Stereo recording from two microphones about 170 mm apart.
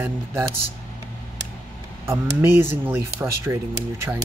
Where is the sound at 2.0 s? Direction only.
15° right (ahead or behind).